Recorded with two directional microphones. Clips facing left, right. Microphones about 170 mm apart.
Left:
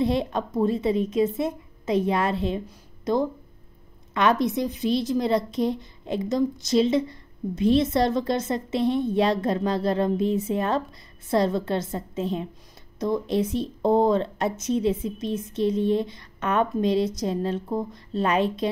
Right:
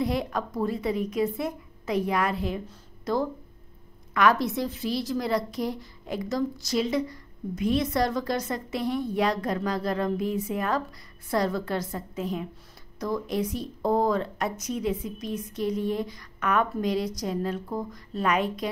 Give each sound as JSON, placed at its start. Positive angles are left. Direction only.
{"t": 0.0, "sound": "a woman's voice", "side_deg": 25}
{"t": 2.6, "sound": "a sound", "side_deg": 15}
{"t": 4.1, "sound": "a woman's voice", "side_deg": 25}